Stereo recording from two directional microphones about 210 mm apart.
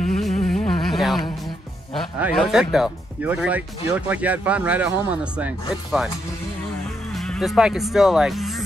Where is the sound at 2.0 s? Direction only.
5° right (ahead or behind).